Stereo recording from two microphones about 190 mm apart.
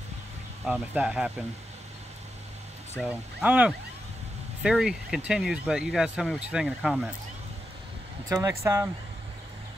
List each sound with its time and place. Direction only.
0.7 s speech: 5° right (ahead or behind)
3.0 s speech: 5° right (ahead or behind)
8.3 s speech: 20° right (ahead or behind)